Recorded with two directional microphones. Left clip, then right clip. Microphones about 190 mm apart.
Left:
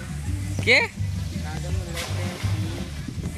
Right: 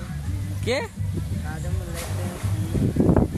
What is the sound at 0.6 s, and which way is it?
Speech, 5° right (ahead or behind).